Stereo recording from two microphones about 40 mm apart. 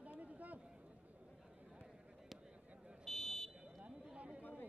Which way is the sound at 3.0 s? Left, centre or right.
Centre.